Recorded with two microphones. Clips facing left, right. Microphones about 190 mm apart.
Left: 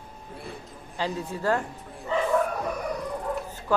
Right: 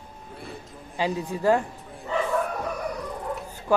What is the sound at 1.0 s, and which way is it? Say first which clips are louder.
Speech: right 3 dB; 15° right (ahead or behind).